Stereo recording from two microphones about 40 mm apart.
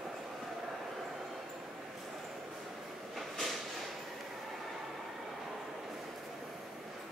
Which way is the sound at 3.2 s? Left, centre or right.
Centre.